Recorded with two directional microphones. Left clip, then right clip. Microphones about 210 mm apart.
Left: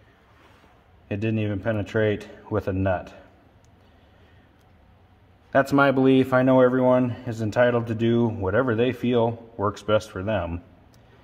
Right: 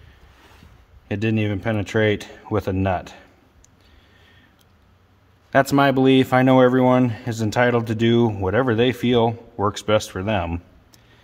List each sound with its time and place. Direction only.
1.0 s speech: 40° right (ahead or behind)
5.5 s speech: 35° right (ahead or behind)